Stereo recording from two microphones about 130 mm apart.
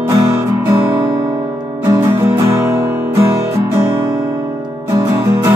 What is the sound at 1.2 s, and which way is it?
Music, 35° right (ahead or behind).